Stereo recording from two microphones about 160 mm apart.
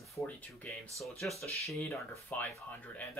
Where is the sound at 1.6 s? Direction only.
10° left (ahead or behind).